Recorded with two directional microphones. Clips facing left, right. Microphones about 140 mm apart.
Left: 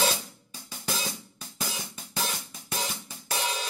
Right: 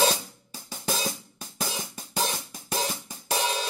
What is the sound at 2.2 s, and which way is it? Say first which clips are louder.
Cymbal: right 4 dB; 30° right (ahead or behind).